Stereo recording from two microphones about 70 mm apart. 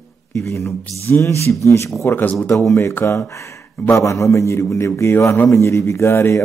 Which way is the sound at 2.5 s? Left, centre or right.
Centre.